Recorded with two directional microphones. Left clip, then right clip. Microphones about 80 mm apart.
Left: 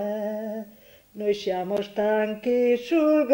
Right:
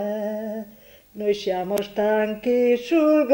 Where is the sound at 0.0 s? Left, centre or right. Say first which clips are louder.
Right 2 dB; left.